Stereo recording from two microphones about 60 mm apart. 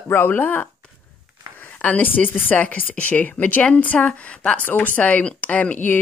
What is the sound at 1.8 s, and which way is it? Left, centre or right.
Speech, left.